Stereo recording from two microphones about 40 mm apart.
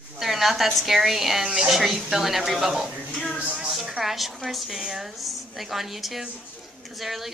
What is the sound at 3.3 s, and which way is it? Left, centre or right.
Speech, right.